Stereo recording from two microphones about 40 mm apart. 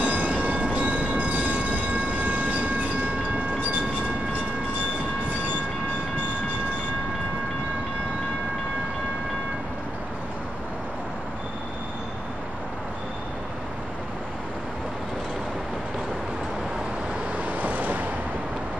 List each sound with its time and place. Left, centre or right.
0.0 s train: right
17.4 s vehicle: right